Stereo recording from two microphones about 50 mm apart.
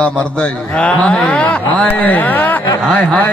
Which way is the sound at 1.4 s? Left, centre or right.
Left.